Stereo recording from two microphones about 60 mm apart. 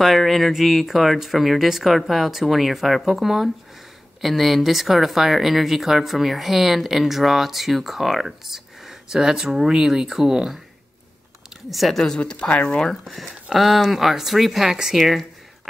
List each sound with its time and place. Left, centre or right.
0.0 s speech: centre
11.7 s speech: centre
12.0 s speech: centre